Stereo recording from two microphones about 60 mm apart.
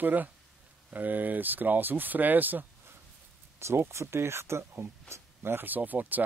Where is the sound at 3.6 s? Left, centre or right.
Right.